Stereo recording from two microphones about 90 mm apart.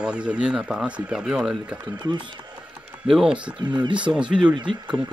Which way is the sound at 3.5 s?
55° right (ahead or behind).